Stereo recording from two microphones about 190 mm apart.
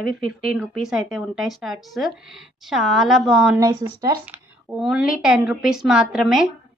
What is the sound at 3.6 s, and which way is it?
Speech, 20° right (ahead or behind).